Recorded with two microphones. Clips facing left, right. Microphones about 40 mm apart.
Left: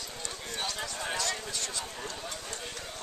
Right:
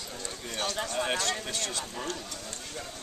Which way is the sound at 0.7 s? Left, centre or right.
Right.